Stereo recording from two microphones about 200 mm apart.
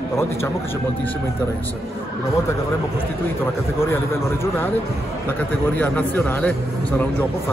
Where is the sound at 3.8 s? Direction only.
10° left (ahead or behind).